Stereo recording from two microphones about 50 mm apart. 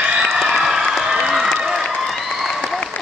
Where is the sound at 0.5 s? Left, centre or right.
Centre.